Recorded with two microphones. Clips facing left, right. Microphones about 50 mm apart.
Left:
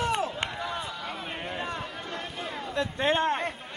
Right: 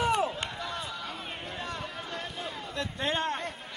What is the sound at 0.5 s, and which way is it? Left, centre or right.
Run, centre.